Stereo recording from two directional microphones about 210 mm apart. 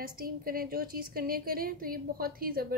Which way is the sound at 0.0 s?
45° right (ahead or behind).